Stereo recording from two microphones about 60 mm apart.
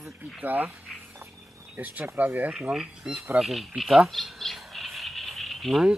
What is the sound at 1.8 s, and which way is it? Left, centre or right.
Speech, right.